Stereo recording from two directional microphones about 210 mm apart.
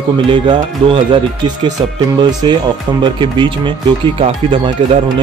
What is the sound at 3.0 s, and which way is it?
Speech, 25° right (ahead or behind).